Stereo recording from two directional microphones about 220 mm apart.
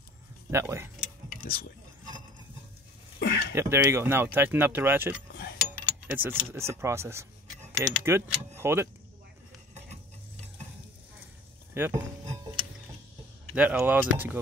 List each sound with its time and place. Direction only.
0.5 s speech: 10° right (ahead or behind)
1.5 s speech: 40° left (ahead or behind)
3.2 s a sound: 45° left (ahead or behind)
3.5 s speech: 10° right (ahead or behind)
11.7 s speech: 10° right (ahead or behind)
13.6 s speech: 5° right (ahead or behind)